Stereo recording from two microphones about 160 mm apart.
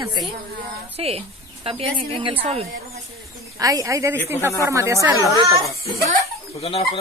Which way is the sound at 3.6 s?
20° right (ahead or behind).